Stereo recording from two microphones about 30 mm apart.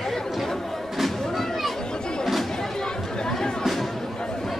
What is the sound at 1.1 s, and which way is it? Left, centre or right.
Music, centre.